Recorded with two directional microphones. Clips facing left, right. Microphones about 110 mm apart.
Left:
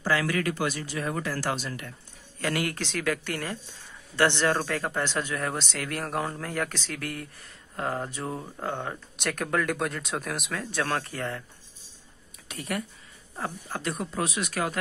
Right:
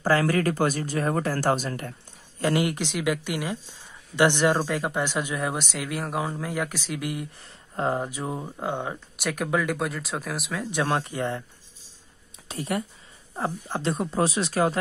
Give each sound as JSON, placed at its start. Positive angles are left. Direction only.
{"t": 0.0, "sound": "speech", "side_deg": -40}
{"t": 2.3, "sound": "speech", "side_deg": -25}
{"t": 10.7, "sound": "speech", "side_deg": -20}
{"t": 12.4, "sound": "speech", "side_deg": -25}